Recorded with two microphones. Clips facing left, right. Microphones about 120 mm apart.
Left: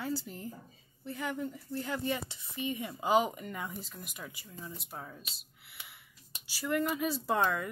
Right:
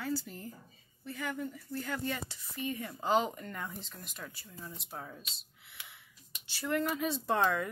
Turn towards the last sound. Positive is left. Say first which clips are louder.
# even
turn(degrees=0)  # may be behind; listen again after turning